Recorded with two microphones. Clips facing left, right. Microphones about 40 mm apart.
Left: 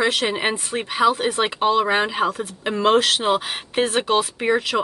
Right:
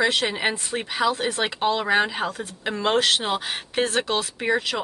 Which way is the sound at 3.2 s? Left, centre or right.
Centre.